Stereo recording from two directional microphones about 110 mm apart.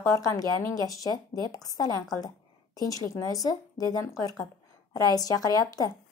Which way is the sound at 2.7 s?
35° left (ahead or behind).